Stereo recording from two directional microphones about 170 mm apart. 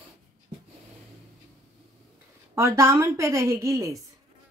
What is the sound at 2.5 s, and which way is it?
Speech, 15° right (ahead or behind).